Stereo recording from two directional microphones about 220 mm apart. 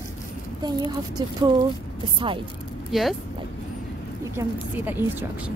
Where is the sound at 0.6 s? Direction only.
20° right (ahead or behind).